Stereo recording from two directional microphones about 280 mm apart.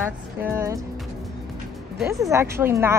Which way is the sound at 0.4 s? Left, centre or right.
Centre.